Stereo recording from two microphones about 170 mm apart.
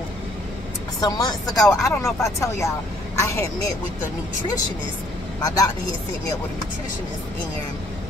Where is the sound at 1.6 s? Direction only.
Centre (ahead or behind).